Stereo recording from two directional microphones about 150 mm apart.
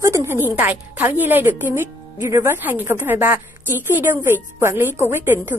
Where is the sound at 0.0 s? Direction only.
20° right (ahead or behind).